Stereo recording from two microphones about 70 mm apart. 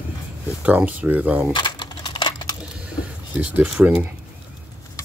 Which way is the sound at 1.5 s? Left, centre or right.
Left.